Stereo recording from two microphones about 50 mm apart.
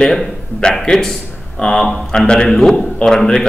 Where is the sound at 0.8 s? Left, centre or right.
Centre.